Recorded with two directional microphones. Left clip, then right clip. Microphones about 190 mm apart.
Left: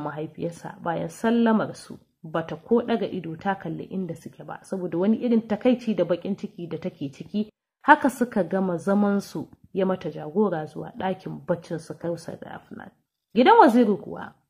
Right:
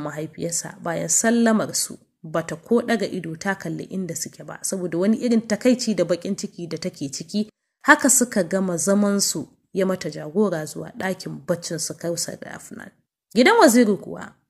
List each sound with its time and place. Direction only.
0.0 s a woman's voice: 20° right (ahead or behind)